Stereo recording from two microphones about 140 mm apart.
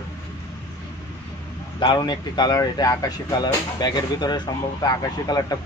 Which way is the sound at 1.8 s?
30° left (ahead or behind).